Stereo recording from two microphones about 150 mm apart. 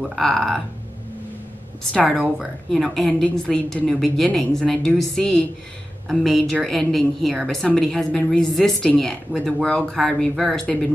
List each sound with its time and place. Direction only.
0.1 s a woman's voice: centre (ahead or behind)
1.9 s a woman's voice: 5° left (ahead or behind)